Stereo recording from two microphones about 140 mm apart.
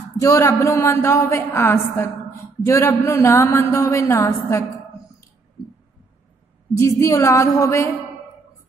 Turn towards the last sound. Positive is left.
turn(degrees=20)  # may be behind; listen again after turning